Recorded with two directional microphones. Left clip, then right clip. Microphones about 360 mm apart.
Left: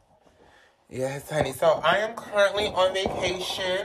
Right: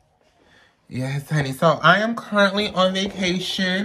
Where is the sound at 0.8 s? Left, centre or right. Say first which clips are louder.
Left 1 dB; centre.